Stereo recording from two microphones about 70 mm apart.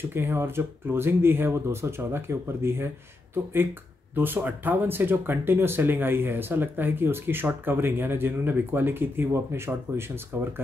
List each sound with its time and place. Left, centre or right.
0.1 s speech: right
4.1 s speech: right